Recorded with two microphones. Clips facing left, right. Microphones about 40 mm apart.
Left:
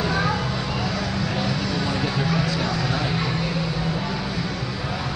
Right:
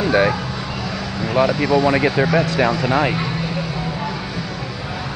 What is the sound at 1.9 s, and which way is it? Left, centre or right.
Speech, right.